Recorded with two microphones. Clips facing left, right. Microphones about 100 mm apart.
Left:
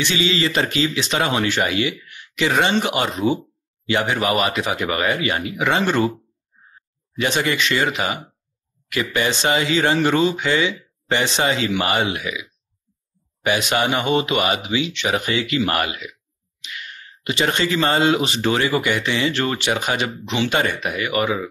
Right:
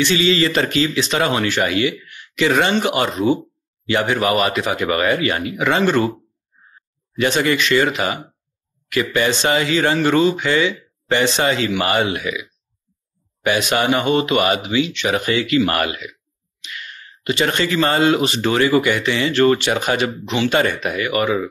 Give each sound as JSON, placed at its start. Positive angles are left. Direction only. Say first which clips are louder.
{"t": 0.0, "sound": "speech", "louder": "right 4 dB", "side_deg": 20}
{"t": 7.2, "sound": "speech", "louder": "right 3 dB", "side_deg": 20}